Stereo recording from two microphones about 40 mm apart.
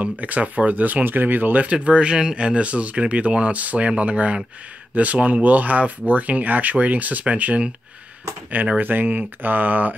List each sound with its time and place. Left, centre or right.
0.0 s speech: right
8.7 s speech: right